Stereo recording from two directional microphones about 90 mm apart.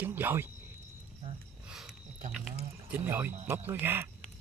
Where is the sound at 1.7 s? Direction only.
5° right (ahead or behind).